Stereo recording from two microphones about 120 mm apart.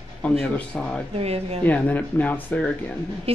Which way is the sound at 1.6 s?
15° left (ahead or behind).